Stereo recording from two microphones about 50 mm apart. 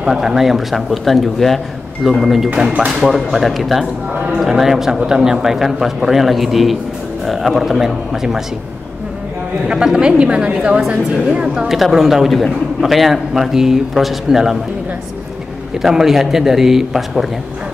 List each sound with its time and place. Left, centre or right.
0.0 s a man's voice: centre
9.9 s a woman's voice: centre
11.7 s a man's voice: centre
15.8 s a man's voice: centre